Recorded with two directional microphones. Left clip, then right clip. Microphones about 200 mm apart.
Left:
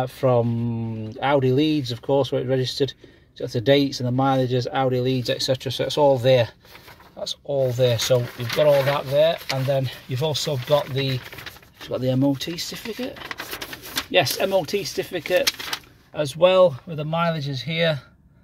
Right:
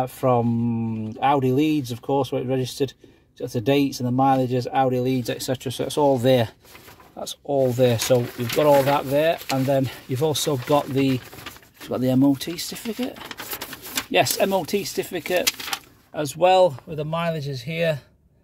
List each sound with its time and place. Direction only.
0.0 s speech: centre (ahead or behind); by 11.1 s 30° right (ahead or behind)
11.9 s speech: 20° right (ahead or behind)
14.1 s speech: 15° right (ahead or behind)